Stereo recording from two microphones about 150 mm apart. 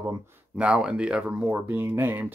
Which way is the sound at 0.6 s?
5° right (ahead or behind).